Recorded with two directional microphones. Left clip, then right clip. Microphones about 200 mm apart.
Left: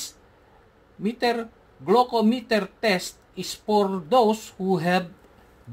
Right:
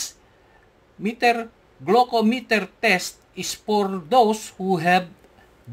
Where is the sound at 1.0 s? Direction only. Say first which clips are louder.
Right 4 dB; 20° right (ahead or behind).